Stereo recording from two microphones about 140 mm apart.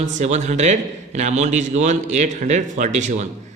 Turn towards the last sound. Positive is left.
turn(degrees=-60)  # may be behind; listen again after turning